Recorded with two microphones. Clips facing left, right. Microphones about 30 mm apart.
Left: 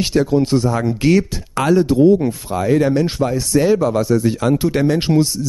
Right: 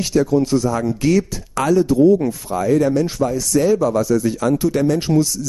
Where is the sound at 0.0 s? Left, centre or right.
Left.